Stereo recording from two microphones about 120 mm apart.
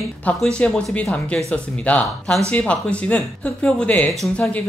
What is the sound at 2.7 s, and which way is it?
Speech, 10° left (ahead or behind).